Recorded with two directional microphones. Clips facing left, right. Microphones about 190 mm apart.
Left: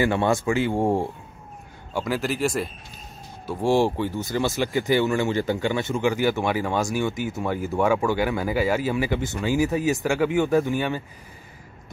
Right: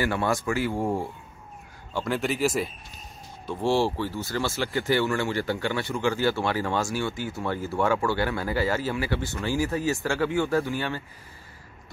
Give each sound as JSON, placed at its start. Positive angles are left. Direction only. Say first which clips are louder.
{"t": 0.0, "sound": "speech", "louder": "left 4 dB", "side_deg": 25}
{"t": 2.0, "sound": "speech", "louder": "left 1 dB", "side_deg": 5}
{"t": 3.4, "sound": "speech", "louder": "left 3 dB", "side_deg": 15}